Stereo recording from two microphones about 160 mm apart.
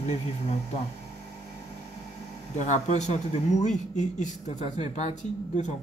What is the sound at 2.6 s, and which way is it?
Speech, 45° left (ahead or behind).